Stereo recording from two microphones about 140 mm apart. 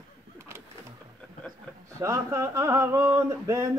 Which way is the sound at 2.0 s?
20° right (ahead or behind).